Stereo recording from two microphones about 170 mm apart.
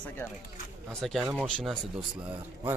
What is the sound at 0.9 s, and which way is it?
Speech, centre (ahead or behind).